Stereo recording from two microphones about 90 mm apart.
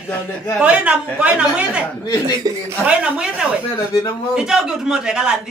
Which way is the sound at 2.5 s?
45° right (ahead or behind).